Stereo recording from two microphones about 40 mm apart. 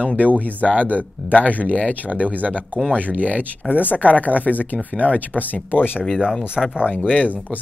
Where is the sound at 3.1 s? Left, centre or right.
Right.